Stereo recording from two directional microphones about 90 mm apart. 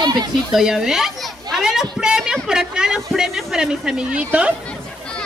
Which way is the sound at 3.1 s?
5° right (ahead or behind).